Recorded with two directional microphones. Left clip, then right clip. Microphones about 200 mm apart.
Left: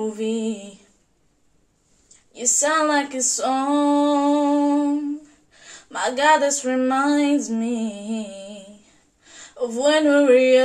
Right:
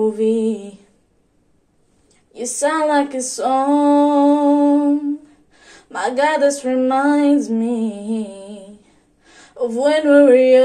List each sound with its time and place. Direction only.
0.0 s female singing: 15° right (ahead or behind)
2.6 s female singing: 20° right (ahead or behind)
9.2 s speech: 20° right (ahead or behind)